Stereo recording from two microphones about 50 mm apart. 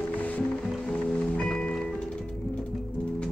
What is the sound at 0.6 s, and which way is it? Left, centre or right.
Music, centre.